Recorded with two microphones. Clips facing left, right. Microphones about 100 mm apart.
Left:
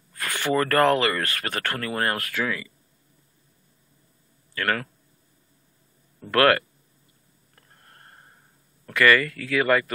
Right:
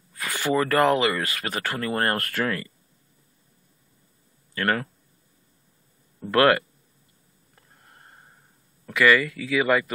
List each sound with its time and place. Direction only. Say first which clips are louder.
0.1 s speech: even; 5° right (ahead or behind)
1.8 s speech: right 3 dB; 30° right (ahead or behind); by 2.7 s 50° right (ahead or behind)
4.6 s speech: right 1 dB; 25° right (ahead or behind)
6.3 s speech: even; 15° right (ahead or behind)
7.5 s a sound: even; 5° right (ahead or behind)
8.8 s speech: even; 5° right (ahead or behind)